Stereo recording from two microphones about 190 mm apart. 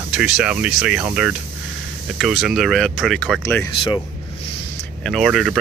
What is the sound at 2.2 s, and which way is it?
Speech, centre (ahead or behind).